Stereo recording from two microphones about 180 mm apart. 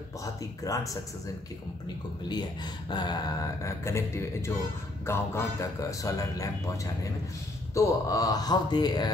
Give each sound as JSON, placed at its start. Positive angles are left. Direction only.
{"t": 0.2, "sound": "speech", "side_deg": 20}
{"t": 2.2, "sound": "speech", "side_deg": 25}